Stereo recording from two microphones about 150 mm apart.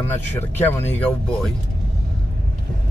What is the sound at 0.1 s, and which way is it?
Speech, 15° left (ahead or behind).